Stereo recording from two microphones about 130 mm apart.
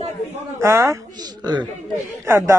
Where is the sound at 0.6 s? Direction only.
20° right (ahead or behind).